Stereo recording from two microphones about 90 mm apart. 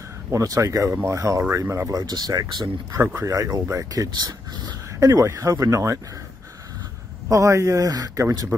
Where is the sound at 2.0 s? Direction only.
50° right (ahead or behind).